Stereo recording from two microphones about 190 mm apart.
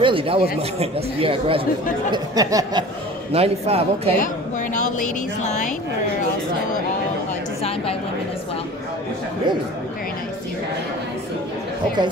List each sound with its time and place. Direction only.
0.0 s speech: 30° right (ahead or behind)
3.3 s a man's voice: 30° right (ahead or behind)
4.7 s a sound: 40° left (ahead or behind)
5.4 s a woman's voice: 40° left (ahead or behind)